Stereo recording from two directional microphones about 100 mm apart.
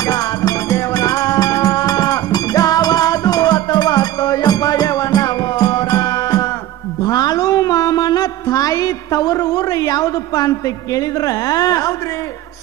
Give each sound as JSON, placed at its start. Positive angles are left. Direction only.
{"t": 0.0, "sound": "music", "side_deg": 35}